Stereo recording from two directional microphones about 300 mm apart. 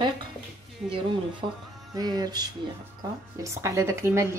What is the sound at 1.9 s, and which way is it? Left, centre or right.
Speech, centre.